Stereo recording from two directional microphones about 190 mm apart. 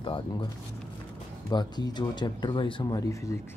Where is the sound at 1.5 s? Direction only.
20° left (ahead or behind).